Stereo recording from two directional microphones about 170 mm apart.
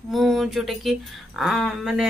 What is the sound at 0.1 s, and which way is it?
Speech, centre (ahead or behind).